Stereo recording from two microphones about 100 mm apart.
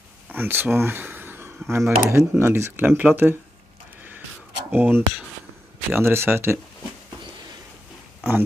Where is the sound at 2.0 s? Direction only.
25° right (ahead or behind).